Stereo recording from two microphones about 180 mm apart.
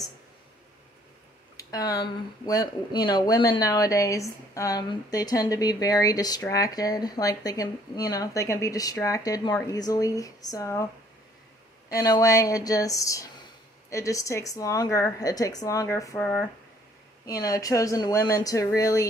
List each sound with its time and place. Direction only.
1.6 s speech: 20° left (ahead or behind)
11.9 s a woman's voice: 20° left (ahead or behind)